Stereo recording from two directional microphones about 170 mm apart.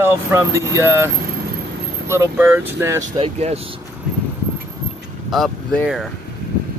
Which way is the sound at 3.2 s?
35° right (ahead or behind).